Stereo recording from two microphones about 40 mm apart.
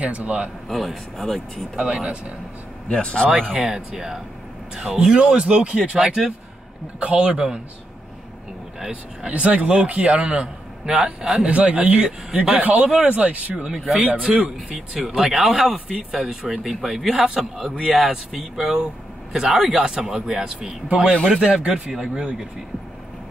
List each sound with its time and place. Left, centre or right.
0.0 s speech: right
0.7 s a man's voice: centre
1.8 s speech: right
2.9 s a man's voice: left
3.5 s speech: right
7.0 s speech: right
7.3 s speech: right
9.3 s speech: right
10.9 s speech: centre
11.4 s speech: right
14.3 s speech: centre
15.0 s speech: centre